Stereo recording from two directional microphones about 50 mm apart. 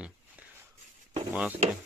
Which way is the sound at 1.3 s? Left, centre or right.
Right.